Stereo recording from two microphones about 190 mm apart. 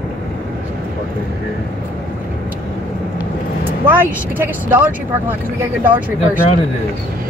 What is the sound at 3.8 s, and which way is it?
Speech, 10° right (ahead or behind).